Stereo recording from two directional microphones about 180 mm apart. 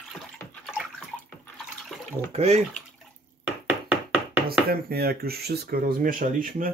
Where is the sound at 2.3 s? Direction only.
35° right (ahead or behind).